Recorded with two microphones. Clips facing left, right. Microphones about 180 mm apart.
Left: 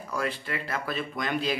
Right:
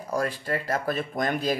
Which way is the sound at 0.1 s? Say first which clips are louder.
Right 4 dB; 45° right (ahead or behind).